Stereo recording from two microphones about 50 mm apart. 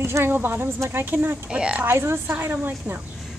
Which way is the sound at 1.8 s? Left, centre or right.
Right.